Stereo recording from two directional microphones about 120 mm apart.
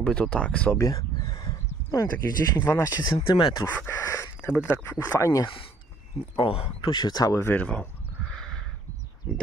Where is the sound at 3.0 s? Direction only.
45° left (ahead or behind).